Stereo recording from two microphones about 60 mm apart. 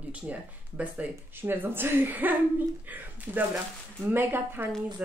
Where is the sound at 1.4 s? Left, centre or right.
Right.